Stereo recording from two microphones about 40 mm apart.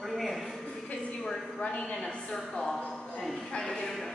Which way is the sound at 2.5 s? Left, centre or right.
Centre.